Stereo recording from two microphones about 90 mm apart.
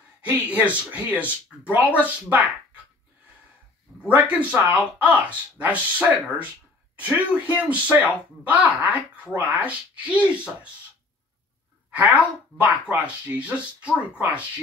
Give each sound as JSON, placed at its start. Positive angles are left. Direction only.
{"t": 0.2, "sound": "speech", "side_deg": -15}
{"t": 4.1, "sound": "speech", "side_deg": -20}
{"t": 12.5, "sound": "speech", "side_deg": -15}